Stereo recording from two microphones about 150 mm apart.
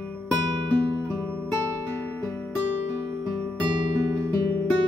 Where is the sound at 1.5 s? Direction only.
15° left (ahead or behind).